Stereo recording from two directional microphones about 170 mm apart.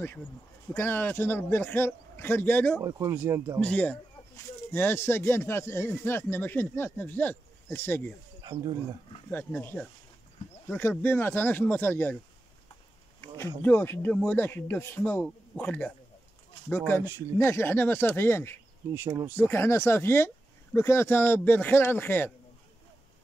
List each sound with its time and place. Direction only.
0.7 s speech: 10° left (ahead or behind)
2.8 s speech: 20° right (ahead or behind)
3.5 s speech: 10° left (ahead or behind)
8.4 s a sound: 25° right (ahead or behind)
9.3 s speech: 10° left (ahead or behind)
13.6 s speech: 10° left (ahead or behind)
18.9 s speech: 15° right (ahead or behind)
19.3 s speech: 15° left (ahead or behind)